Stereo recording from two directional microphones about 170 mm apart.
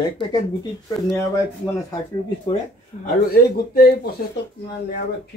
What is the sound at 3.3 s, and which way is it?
Speech, 60° left (ahead or behind).